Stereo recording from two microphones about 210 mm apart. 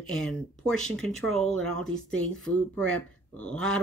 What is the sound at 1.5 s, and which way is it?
Speech, 75° right (ahead or behind).